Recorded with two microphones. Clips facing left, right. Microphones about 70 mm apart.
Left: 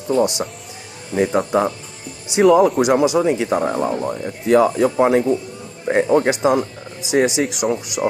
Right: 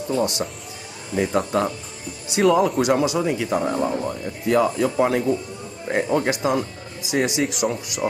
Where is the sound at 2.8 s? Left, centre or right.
Left.